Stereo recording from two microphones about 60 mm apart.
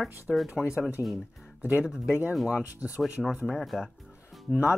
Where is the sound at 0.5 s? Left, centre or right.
Centre.